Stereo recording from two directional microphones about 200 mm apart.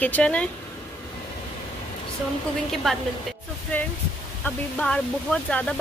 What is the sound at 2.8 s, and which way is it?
A woman's voice, 5° left (ahead or behind).